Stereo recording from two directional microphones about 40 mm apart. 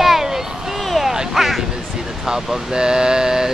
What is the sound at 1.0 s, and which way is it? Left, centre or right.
Quack, centre.